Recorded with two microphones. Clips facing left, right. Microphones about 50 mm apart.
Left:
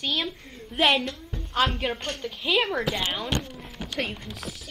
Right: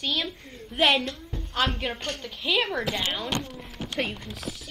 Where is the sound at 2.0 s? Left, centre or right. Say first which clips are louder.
Left 1 dB; left.